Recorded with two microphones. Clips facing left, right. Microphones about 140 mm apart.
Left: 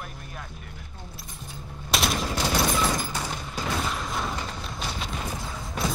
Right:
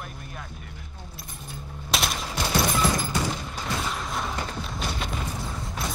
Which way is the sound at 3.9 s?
Centre (ahead or behind).